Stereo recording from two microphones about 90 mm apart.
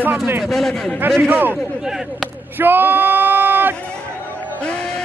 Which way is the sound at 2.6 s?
20° right (ahead or behind).